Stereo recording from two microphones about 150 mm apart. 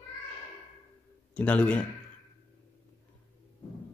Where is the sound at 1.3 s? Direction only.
10° left (ahead or behind).